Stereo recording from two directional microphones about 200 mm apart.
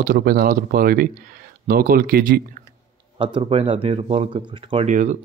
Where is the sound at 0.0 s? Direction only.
45° right (ahead or behind).